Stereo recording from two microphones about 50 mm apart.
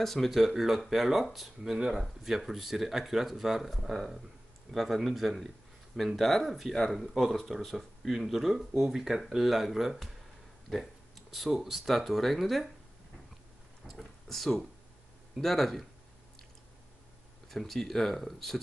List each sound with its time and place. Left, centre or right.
0.0 s speech: centre
13.8 s a sound: centre
15.4 s speech: centre
17.5 s speech: centre